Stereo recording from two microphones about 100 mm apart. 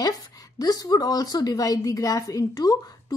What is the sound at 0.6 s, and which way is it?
A woman's voice, 40° left (ahead or behind).